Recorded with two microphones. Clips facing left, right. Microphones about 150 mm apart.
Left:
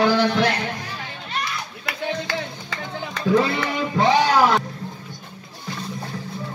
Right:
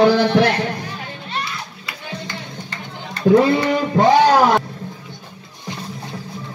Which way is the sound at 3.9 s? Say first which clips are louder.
Right 5 dB; 40° right (ahead or behind).